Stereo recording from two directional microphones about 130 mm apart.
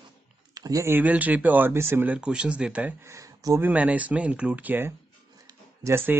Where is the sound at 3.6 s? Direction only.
10° right (ahead or behind).